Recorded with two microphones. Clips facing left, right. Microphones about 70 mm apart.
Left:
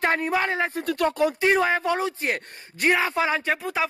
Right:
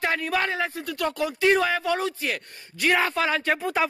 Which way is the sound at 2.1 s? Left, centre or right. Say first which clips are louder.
Left 2 dB; left.